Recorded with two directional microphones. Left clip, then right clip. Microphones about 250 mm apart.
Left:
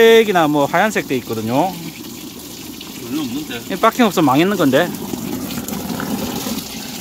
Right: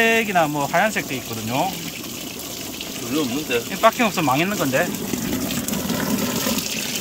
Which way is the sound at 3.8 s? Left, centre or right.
Left.